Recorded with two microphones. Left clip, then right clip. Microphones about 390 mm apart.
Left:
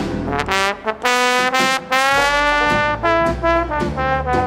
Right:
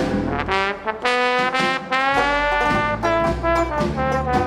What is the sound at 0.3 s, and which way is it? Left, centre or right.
Brass instrument, left.